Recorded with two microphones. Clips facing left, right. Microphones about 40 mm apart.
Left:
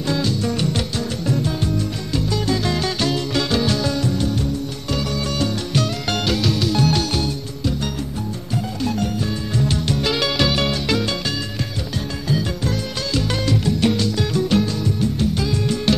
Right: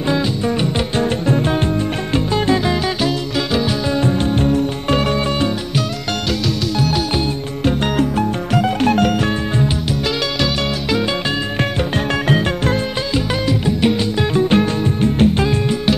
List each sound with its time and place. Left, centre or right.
0.9 s music: right
2.6 s music: centre
3.9 s music: right
6.4 s music: centre
8.8 s music: right
12.3 s music: right
13.1 s music: right
14.5 s music: right